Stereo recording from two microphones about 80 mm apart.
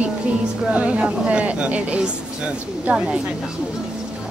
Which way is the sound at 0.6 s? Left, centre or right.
Centre.